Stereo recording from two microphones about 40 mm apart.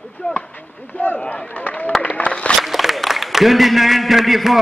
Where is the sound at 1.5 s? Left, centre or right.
Left.